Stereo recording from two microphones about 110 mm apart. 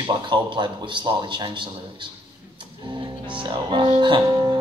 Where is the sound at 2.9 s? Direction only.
50° right (ahead or behind).